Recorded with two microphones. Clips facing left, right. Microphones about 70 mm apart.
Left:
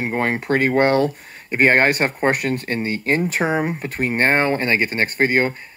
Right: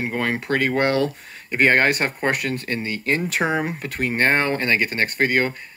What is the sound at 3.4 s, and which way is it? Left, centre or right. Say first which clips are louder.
Speech: left 2 dB; centre.